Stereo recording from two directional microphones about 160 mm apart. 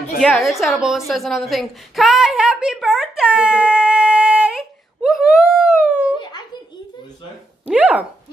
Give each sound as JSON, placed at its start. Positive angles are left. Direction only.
{"t": 0.2, "sound": "a woman's voice", "side_deg": 0}
{"t": 6.1, "sound": "a sound", "side_deg": 30}
{"t": 7.6, "sound": "speech", "side_deg": -10}